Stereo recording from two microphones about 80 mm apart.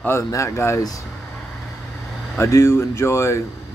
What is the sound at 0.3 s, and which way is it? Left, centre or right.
Speech, left.